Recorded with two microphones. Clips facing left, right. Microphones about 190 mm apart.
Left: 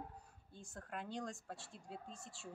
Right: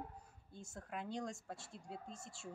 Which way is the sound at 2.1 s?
35° left (ahead or behind).